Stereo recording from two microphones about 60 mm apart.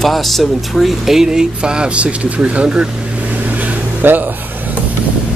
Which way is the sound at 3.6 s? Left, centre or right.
Right.